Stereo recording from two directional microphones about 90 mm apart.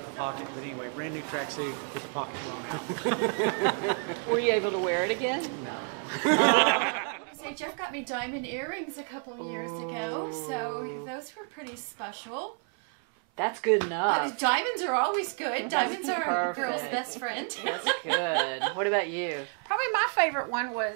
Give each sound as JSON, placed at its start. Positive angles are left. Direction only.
{"t": 0.2, "sound": "speech", "side_deg": -20}
{"t": 13.4, "sound": "speech", "side_deg": -15}